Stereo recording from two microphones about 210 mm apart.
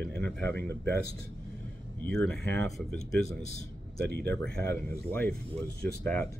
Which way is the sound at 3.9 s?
50° right (ahead or behind).